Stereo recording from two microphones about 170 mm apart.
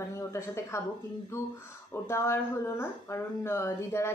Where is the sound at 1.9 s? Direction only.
15° left (ahead or behind).